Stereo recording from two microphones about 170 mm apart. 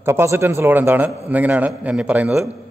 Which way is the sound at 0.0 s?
15° right (ahead or behind).